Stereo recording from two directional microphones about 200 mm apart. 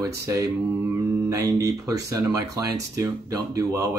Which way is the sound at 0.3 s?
15° right (ahead or behind).